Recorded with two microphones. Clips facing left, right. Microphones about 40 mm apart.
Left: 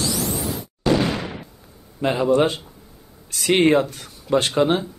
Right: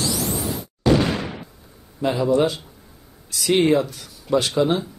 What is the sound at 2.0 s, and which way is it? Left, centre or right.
Speech, left.